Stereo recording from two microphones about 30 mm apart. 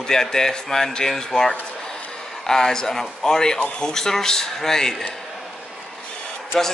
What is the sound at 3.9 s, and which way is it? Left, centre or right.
Speech, centre.